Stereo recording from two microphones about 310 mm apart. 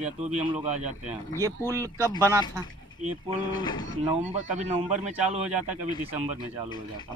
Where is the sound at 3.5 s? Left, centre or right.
Centre.